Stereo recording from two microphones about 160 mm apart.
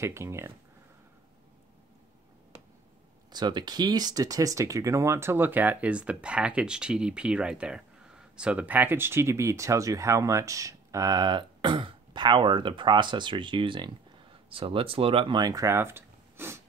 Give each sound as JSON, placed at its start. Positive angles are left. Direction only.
{"t": 0.0, "sound": "speech", "side_deg": -15}
{"t": 3.3, "sound": "speech", "side_deg": -25}